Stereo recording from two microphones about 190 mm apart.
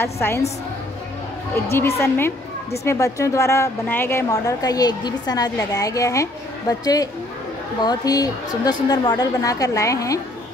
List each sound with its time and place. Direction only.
0.0 s a woman's voice: 15° left (ahead or behind)
1.7 s a woman's voice: 15° left (ahead or behind)